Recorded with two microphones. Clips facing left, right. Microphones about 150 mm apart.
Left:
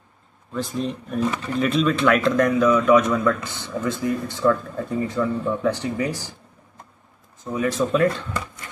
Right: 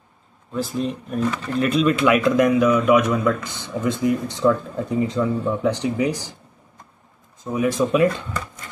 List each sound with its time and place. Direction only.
0.5 s speech: 5° right (ahead or behind)
7.5 s speech: 15° right (ahead or behind)